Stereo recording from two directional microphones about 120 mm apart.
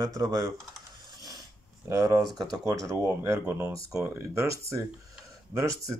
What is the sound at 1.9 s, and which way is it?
Speech, 30° right (ahead or behind).